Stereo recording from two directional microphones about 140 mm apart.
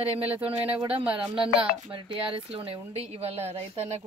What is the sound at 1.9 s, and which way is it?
A woman's voice, 40° right (ahead or behind).